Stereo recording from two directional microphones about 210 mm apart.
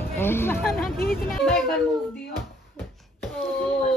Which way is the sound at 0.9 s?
45° left (ahead or behind).